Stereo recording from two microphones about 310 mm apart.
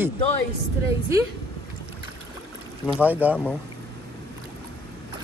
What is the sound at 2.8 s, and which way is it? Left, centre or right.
Speech, centre.